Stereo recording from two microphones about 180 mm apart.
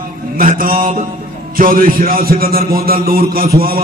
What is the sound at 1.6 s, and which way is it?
Mantra, 50° right (ahead or behind).